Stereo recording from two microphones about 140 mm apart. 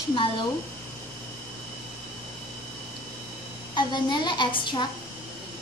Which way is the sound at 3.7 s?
35° left (ahead or behind).